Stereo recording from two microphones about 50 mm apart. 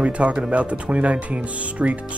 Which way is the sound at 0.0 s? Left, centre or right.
Right.